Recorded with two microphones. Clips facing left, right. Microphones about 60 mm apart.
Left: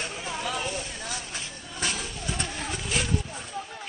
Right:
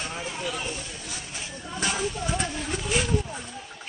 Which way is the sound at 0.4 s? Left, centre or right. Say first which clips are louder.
Left 4 dB; left.